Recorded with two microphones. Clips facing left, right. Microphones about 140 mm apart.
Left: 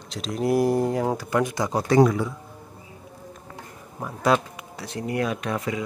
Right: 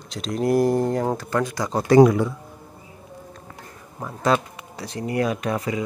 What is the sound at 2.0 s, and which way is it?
Speech, 5° right (ahead or behind).